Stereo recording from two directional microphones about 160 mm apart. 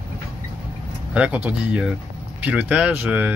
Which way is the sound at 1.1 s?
5° right (ahead or behind).